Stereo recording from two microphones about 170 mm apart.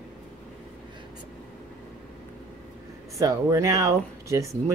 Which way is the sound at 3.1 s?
20° right (ahead or behind).